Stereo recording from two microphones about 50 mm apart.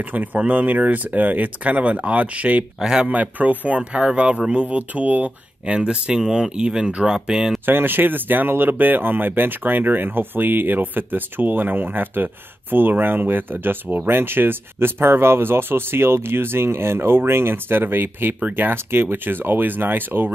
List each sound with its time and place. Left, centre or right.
0.0 s speech: right
2.8 s speech: centre
3.1 s speech: right
5.8 s speech: centre
7.6 s speech: right